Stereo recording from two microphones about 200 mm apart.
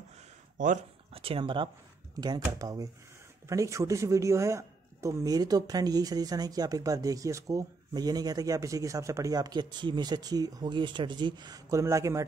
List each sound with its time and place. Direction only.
0.6 s speech: 40° right (ahead or behind)
1.2 s speech: 25° right (ahead or behind)